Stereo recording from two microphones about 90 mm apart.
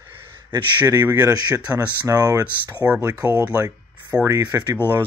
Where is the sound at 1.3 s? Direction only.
40° right (ahead or behind).